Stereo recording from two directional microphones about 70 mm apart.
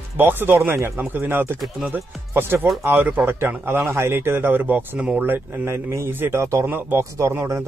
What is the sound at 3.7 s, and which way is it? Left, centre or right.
Speech, right.